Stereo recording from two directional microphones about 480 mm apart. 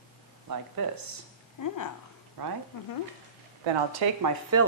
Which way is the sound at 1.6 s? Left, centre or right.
Left.